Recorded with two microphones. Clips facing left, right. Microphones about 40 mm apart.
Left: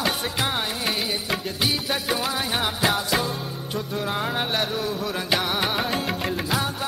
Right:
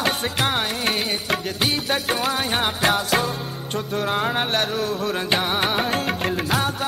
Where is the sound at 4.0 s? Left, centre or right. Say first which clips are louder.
Right 4 dB; right.